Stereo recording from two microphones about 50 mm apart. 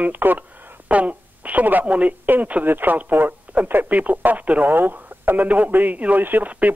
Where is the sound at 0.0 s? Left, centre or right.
Right.